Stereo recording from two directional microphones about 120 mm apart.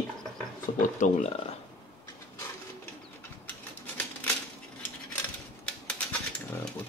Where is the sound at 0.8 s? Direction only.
90° left.